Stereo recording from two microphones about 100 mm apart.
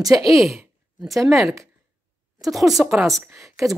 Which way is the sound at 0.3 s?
Centre (ahead or behind).